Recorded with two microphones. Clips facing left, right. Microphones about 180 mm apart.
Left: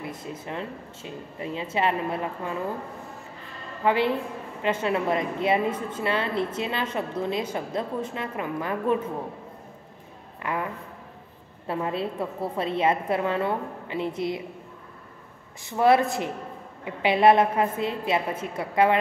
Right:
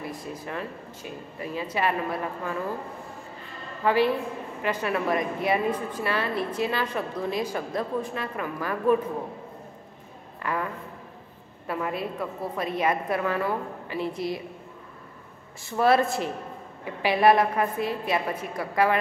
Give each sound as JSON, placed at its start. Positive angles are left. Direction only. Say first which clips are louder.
{"t": 0.0, "sound": "a woman's voice", "louder": "even", "side_deg": 25}
{"t": 3.8, "sound": "a woman's voice", "louder": "right 1 dB", "side_deg": 20}
{"t": 10.4, "sound": "a sound", "louder": "even", "side_deg": 20}
{"t": 11.6, "sound": "a woman's voice", "louder": "left 2 dB", "side_deg": 25}
{"t": 15.6, "sound": "a woman's voice", "louder": "left 1 dB", "side_deg": 20}